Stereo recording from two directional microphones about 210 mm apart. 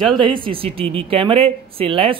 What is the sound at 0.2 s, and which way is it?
Speech, 25° right (ahead or behind).